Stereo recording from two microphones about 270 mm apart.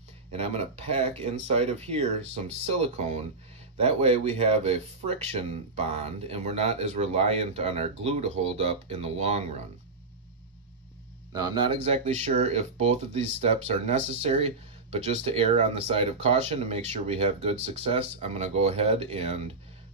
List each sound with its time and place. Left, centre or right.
0.3 s speech: right
11.3 s speech: centre